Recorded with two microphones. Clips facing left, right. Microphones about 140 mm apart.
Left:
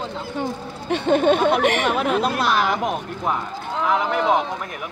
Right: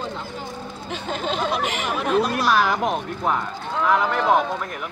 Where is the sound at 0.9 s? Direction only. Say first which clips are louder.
Left 10 dB; 65° left (ahead or behind).